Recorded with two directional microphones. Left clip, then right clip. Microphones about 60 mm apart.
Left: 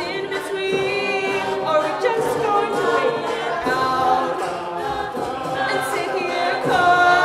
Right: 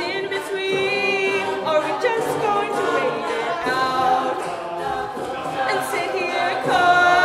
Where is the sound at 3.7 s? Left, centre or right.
Centre.